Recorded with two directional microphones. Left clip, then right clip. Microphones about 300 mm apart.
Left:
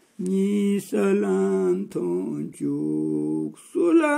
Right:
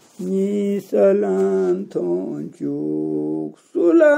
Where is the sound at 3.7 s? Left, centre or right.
Centre.